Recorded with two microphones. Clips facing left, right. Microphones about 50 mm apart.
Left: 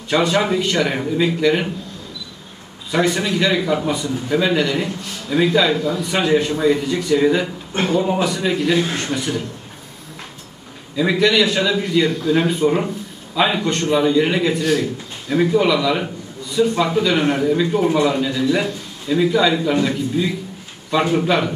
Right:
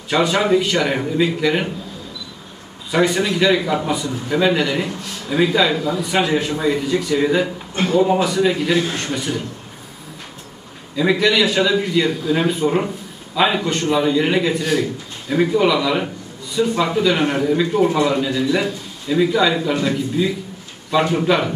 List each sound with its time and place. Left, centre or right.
0.1 s a man's voice: centre
2.9 s a man's voice: centre
7.7 s a man's voice: left
8.0 s a man's voice: centre
11.0 s a man's voice: centre